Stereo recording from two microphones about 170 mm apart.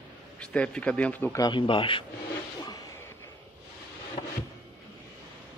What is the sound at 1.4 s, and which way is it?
Speech, 25° left (ahead or behind).